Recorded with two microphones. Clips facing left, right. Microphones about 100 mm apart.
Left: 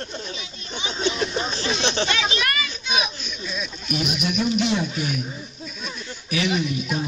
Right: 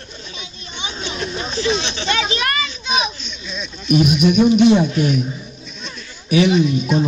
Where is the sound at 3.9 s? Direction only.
25° right (ahead or behind).